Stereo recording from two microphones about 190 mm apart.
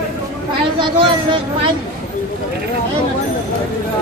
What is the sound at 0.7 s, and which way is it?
Speech, 25° right (ahead or behind).